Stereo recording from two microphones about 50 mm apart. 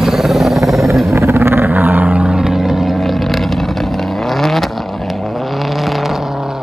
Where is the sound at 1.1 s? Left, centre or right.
Right.